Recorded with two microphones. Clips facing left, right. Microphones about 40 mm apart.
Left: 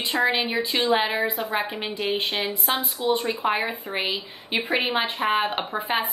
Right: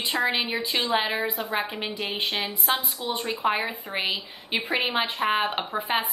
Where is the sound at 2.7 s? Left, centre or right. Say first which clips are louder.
Left 4 dB; left.